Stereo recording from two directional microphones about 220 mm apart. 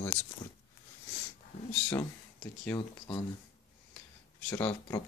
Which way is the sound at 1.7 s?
10° left (ahead or behind).